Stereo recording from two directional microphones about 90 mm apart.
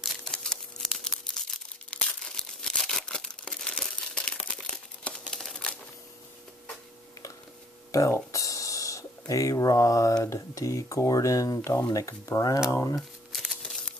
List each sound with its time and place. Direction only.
0.0 s crumpling: 5° left (ahead or behind)
7.9 s speech: 40° left (ahead or behind)
12.9 s crumpling: centre (ahead or behind)